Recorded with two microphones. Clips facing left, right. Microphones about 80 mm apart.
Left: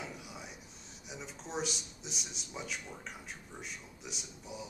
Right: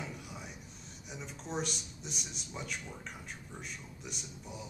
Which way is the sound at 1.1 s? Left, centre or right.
Centre.